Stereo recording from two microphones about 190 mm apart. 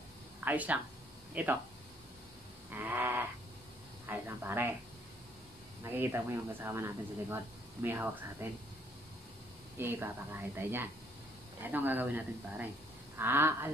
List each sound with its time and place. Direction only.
0.5 s speech: 10° right (ahead or behind)
2.7 s speech: 10° right (ahead or behind)
5.9 s speech: 10° right (ahead or behind)
9.8 s speech: 10° right (ahead or behind)